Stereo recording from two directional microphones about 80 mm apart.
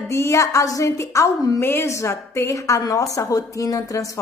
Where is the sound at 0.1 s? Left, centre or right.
Left.